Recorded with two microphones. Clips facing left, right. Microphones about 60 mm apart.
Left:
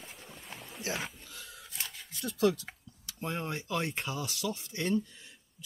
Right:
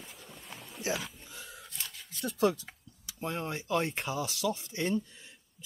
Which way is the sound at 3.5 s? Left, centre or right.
Centre.